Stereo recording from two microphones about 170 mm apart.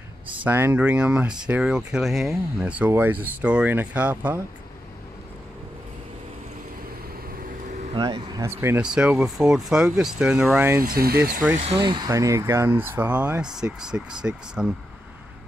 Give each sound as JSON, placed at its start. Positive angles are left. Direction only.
{"t": 0.4, "sound": "speech", "side_deg": -10}
{"t": 7.9, "sound": "speech", "side_deg": -25}
{"t": 10.8, "sound": "speech", "side_deg": -60}
{"t": 11.6, "sound": "speech", "side_deg": -30}